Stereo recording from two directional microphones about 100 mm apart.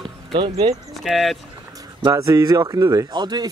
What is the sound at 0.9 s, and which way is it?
Speech, centre (ahead or behind).